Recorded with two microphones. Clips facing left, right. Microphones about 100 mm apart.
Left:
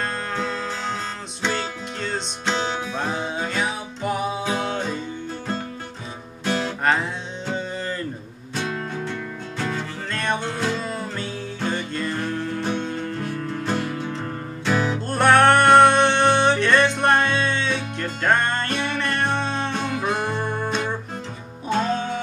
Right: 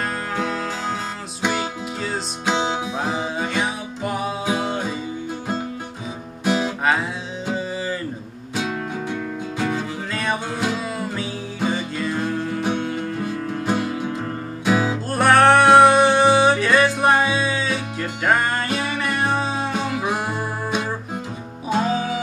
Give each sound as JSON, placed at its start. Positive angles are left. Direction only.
{"t": 0.4, "sound": "music", "side_deg": -10}
{"t": 6.4, "sound": "guitar", "side_deg": -15}
{"t": 6.8, "sound": "music", "side_deg": -5}